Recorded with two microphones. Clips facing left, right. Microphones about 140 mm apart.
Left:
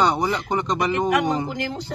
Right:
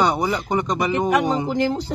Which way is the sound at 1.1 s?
30° right (ahead or behind).